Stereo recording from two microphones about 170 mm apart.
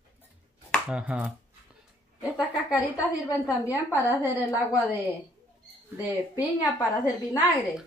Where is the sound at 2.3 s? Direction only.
5° right (ahead or behind).